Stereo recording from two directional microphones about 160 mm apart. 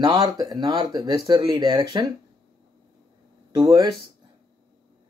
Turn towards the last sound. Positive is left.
turn(degrees=-30)  # may be behind; listen again after turning